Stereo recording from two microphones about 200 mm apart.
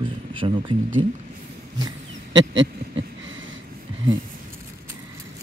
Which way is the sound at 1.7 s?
20° right (ahead or behind).